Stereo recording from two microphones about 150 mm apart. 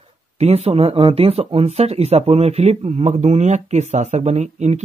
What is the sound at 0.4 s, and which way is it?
Speech, 45° right (ahead or behind).